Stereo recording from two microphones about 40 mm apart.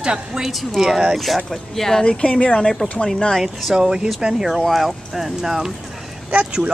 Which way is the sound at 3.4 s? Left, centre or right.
Centre.